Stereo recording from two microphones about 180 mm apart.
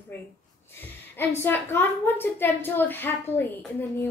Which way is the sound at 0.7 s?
10° left (ahead or behind).